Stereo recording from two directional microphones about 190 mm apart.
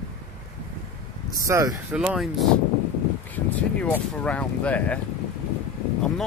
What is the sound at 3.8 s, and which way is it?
Speech, 5° left (ahead or behind).